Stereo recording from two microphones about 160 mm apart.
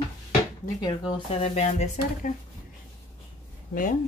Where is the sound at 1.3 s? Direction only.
40° left (ahead or behind).